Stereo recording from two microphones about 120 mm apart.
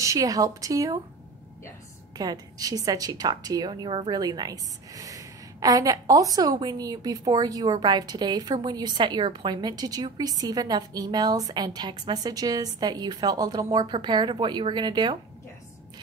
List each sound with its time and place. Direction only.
0.0 s speech: 30° right (ahead or behind)
2.1 s a woman's voice: 35° right (ahead or behind)